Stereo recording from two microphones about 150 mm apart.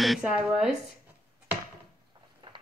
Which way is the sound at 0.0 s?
Centre (ahead or behind).